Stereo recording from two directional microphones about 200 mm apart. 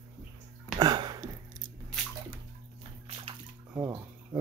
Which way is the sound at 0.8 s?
20° right (ahead or behind).